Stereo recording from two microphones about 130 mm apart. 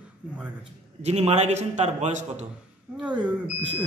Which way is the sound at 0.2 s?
5° right (ahead or behind).